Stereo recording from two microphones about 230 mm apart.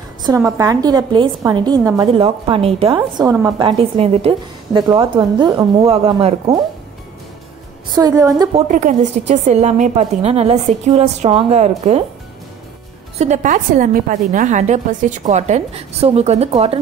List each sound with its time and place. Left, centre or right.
0.2 s a woman's voice: centre
7.9 s a woman's voice: centre
8.6 s a woman's voice: right
13.2 s a woman's voice: right